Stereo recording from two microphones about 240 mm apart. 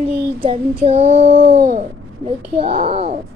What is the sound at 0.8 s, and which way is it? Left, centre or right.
Child singing, right.